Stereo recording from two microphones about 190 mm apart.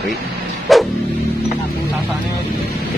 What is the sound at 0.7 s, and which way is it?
Bow-wow, centre (ahead or behind).